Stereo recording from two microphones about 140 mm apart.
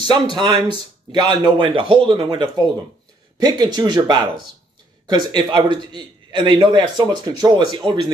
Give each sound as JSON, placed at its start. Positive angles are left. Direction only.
{"t": 0.0, "sound": "a man's voice", "side_deg": -30}